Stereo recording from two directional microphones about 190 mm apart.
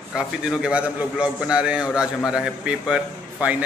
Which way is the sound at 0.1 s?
5° right (ahead or behind).